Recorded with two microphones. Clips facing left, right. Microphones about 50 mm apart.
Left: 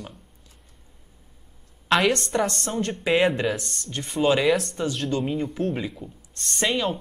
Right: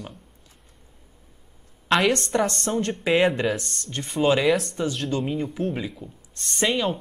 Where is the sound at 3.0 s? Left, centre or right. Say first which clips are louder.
Even; centre.